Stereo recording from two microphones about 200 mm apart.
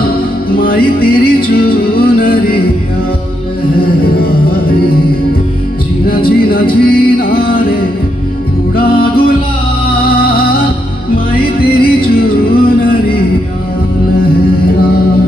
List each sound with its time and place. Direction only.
0.6 s music: 45° left (ahead or behind)
4.0 s music: 50° left (ahead or behind)
6.0 s music: 50° left (ahead or behind)
11.8 s music: 50° left (ahead or behind)
14.2 s music: 50° left (ahead or behind)